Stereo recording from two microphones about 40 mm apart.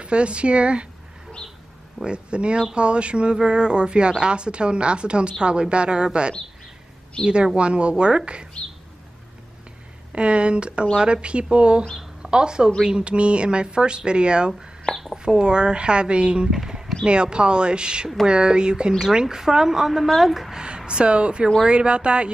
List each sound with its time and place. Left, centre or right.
0.0 s speech: right
2.0 s speech: right
10.1 s a woman's voice: right
14.9 s a sound: centre
15.2 s speech: right
16.5 s a sound: centre
17.0 s a woman's voice: right; by 20.5 s centre
20.5 s speech: right